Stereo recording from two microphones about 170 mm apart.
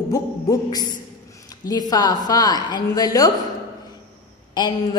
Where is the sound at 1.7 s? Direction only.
20° left (ahead or behind).